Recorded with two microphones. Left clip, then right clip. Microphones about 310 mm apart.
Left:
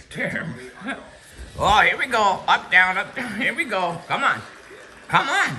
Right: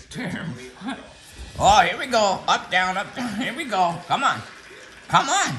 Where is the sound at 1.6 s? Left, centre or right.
Centre.